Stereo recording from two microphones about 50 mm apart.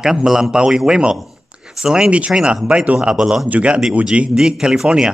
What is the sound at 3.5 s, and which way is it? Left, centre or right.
Speech, right.